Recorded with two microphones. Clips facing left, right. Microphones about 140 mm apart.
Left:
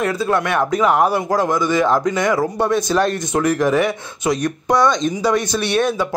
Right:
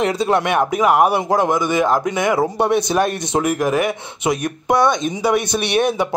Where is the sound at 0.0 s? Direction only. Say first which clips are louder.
Right 1 dB; 20° right (ahead or behind).